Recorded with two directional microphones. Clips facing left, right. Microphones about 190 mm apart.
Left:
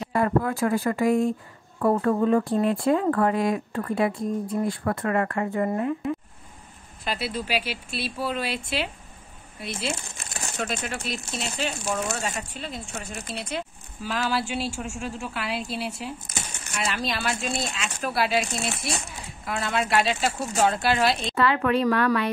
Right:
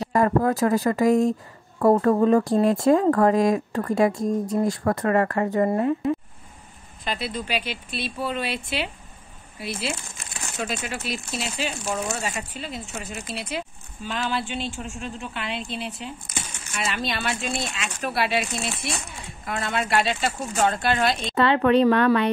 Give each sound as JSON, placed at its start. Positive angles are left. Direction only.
{"t": 0.0, "sound": "speech", "side_deg": -40}
{"t": 7.1, "sound": "speech", "side_deg": 5}
{"t": 21.4, "sound": "speech", "side_deg": -25}